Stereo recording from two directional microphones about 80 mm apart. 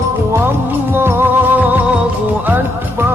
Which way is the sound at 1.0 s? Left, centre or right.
Right.